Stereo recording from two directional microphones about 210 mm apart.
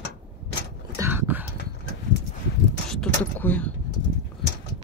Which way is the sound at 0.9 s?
10° right (ahead or behind).